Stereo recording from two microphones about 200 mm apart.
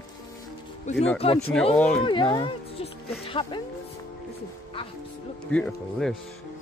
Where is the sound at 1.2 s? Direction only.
30° left (ahead or behind).